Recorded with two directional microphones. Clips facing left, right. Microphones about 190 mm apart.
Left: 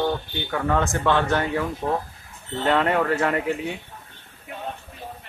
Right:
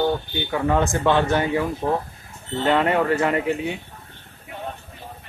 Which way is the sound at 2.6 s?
5° right (ahead or behind).